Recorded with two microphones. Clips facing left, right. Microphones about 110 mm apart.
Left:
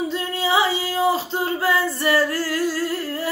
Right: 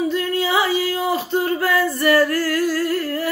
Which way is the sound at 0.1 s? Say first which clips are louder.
Right 2 dB; 25° left (ahead or behind).